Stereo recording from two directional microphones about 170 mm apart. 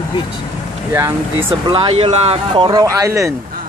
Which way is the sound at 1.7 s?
35° right (ahead or behind).